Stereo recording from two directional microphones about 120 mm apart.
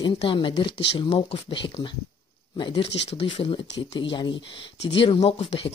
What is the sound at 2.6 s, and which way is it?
Speech, 40° left (ahead or behind).